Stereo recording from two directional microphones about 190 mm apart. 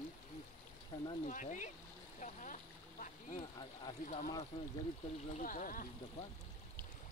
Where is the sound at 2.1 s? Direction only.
40° left (ahead or behind).